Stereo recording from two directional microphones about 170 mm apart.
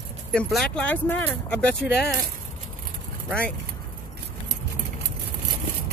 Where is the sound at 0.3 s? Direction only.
5° left (ahead or behind).